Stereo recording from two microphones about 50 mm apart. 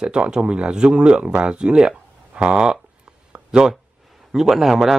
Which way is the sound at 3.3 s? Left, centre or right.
Centre.